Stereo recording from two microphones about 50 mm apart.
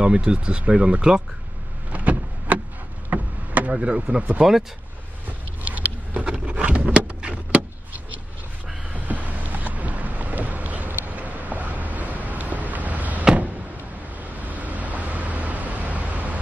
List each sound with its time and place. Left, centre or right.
0.0 s speech: centre
1.9 s power windows: right
3.1 s a sound: right
3.7 s speech: centre
5.6 s vehicle: right
8.9 s boat: right
14.3 s vehicle: right